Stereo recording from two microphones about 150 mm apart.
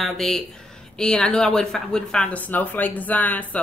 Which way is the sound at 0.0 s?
Centre (ahead or behind).